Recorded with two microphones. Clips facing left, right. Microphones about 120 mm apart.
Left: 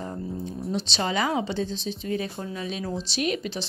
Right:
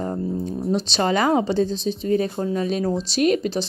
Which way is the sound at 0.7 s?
45° right (ahead or behind).